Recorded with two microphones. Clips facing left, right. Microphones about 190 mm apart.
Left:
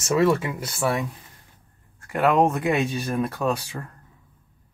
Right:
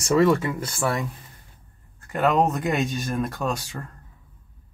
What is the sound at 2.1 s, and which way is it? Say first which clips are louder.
Speech: left 1 dB; centre (ahead or behind).